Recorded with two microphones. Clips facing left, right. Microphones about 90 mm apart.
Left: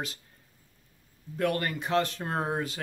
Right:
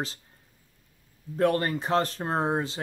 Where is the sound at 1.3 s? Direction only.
30° right (ahead or behind).